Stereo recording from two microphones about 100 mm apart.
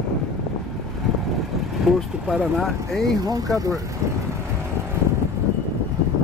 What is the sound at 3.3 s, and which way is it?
Speech, 35° right (ahead or behind).